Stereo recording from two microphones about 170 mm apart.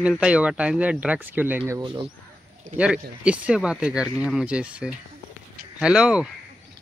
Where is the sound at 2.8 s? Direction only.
5° right (ahead or behind).